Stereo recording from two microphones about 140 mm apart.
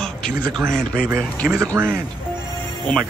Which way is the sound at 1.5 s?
20° right (ahead or behind).